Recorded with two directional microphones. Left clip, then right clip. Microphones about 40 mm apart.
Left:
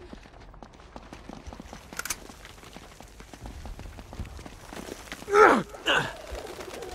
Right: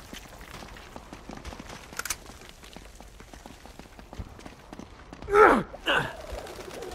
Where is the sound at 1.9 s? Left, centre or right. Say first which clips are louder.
Even; left.